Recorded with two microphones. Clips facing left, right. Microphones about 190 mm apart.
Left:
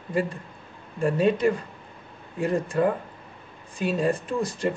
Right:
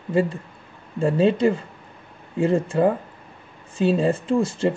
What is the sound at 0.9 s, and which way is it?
Speech, 30° right (ahead or behind).